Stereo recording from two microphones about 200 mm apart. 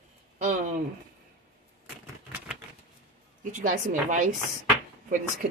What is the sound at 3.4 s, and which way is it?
Speech, 40° right (ahead or behind).